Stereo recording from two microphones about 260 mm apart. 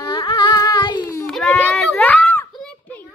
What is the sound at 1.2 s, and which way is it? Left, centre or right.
Children playing, centre.